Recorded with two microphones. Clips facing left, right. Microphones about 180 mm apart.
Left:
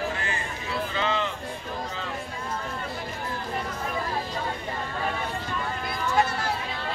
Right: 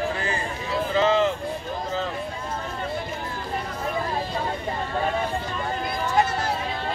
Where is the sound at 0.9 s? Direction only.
40° right (ahead or behind).